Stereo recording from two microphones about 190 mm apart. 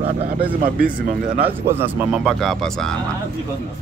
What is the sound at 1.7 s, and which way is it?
Speech, 10° right (ahead or behind).